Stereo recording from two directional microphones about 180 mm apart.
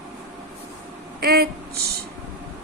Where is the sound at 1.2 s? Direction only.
60° right (ahead or behind).